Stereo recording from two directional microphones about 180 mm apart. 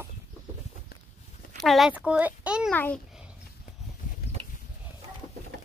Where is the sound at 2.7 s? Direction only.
10° left (ahead or behind).